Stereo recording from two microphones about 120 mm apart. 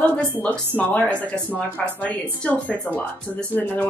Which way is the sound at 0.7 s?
10° left (ahead or behind).